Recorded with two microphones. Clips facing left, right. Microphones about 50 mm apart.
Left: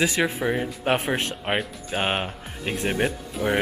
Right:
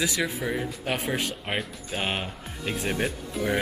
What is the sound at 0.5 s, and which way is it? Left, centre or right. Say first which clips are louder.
Speech: left 5 dB; left.